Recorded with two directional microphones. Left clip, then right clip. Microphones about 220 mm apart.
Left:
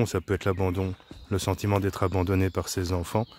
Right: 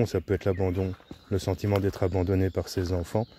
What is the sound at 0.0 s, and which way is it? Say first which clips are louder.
Speech: even; 10° left (ahead or behind).